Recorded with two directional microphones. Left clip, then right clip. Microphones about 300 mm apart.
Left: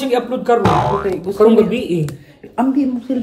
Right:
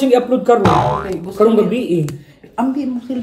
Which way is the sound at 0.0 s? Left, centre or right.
Centre.